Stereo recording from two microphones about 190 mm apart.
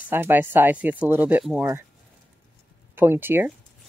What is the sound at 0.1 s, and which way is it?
Speech, 10° right (ahead or behind).